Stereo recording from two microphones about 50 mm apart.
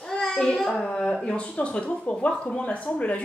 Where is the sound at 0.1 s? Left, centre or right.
Centre.